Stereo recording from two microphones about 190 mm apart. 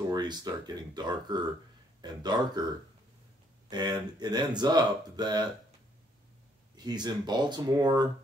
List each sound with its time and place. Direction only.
0.1 s speech: 20° right (ahead or behind)
3.7 s speech: 20° right (ahead or behind)
6.8 s speech: 20° right (ahead or behind)